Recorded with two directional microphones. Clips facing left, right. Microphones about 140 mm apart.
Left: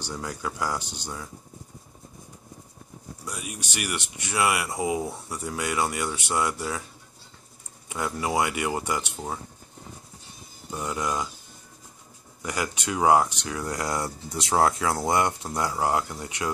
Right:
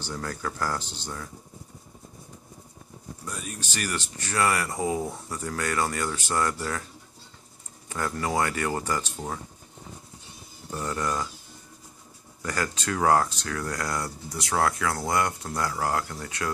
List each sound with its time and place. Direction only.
0.0 s speech: 10° left (ahead or behind)
3.3 s speech: 10° left (ahead or behind)
7.9 s speech: 10° left (ahead or behind)
10.7 s speech: 10° left (ahead or behind)
12.4 s speech: 15° left (ahead or behind)